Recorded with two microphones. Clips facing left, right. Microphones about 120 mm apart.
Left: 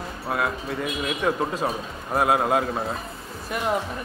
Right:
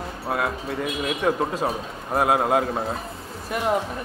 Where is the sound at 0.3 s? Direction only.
35° right (ahead or behind).